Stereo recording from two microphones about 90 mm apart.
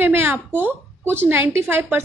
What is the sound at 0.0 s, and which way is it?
Speech, 25° right (ahead or behind).